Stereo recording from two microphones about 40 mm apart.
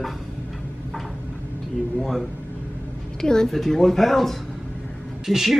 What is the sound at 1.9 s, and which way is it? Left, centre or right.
Speech, centre.